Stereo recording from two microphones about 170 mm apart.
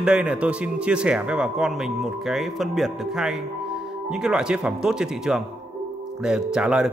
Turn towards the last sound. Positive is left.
turn(degrees=-5)  # may be behind; listen again after turning